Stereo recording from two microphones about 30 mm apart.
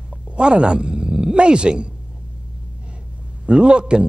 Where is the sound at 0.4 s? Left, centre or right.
Right.